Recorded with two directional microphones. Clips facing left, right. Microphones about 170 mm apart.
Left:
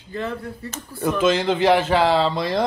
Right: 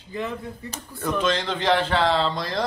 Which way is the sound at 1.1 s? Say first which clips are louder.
Left 5 dB; 5° left (ahead or behind).